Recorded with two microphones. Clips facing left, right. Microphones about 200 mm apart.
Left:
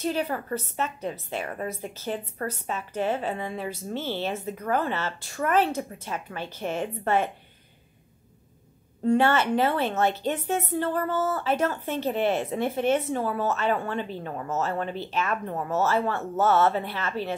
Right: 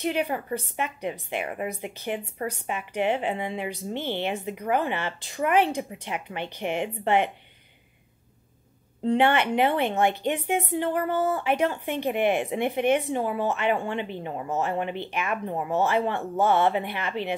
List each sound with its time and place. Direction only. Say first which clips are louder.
0.0 s a woman's voice: right 1 dB; 15° right (ahead or behind)
9.0 s a woman's voice: even; 20° right (ahead or behind)